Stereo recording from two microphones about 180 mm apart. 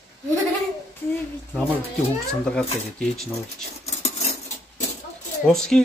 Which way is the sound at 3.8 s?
35° left (ahead or behind).